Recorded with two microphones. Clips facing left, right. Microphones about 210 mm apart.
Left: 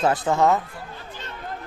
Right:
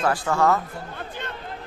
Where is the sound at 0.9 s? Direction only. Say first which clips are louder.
Right 4 dB; 55° right (ahead or behind).